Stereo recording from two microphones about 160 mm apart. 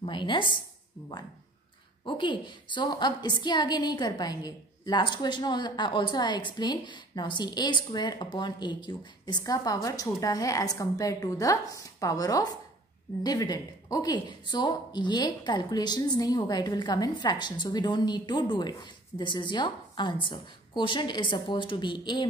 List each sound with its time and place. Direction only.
0.0 s a woman's voice: 30° left (ahead or behind)
2.0 s a woman's voice: 30° left (ahead or behind)